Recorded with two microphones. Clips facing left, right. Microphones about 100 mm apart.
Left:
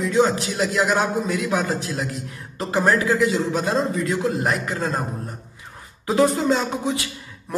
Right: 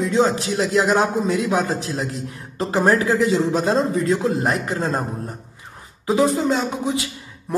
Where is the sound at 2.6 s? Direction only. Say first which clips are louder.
Right 2 dB; 30° right (ahead or behind).